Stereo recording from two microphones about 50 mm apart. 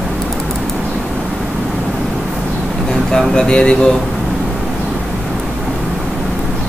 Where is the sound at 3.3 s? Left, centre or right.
Centre.